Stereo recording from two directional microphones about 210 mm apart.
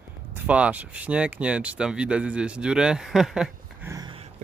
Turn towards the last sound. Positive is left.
turn(degrees=-20)  # may be behind; listen again after turning